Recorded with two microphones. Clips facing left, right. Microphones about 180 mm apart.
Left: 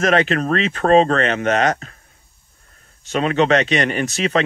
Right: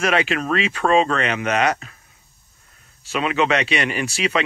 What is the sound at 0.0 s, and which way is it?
Speech, 40° left (ahead or behind).